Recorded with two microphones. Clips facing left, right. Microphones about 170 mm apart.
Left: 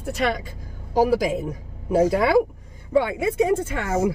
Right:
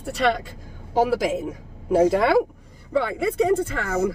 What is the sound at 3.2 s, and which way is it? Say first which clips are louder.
Speech: even; 5° left (ahead or behind).